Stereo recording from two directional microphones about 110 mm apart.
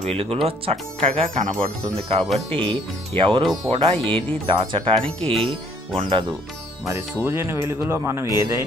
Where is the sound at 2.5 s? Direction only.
50° right (ahead or behind).